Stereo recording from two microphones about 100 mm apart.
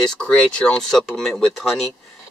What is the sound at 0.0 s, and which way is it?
Speech, 5° left (ahead or behind).